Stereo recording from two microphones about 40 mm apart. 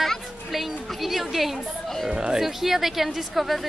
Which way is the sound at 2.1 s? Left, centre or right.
Right.